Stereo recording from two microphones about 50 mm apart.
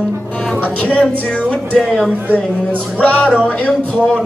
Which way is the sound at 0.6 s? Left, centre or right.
Left.